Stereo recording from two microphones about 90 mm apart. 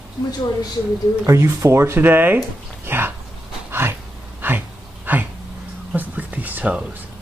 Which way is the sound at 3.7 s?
25° right (ahead or behind).